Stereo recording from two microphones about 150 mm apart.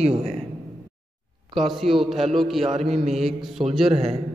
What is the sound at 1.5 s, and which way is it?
A man's voice, centre (ahead or behind).